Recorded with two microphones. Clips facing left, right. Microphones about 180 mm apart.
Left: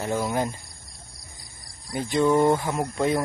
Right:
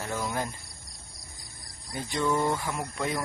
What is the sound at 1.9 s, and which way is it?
Speech, 20° left (ahead or behind).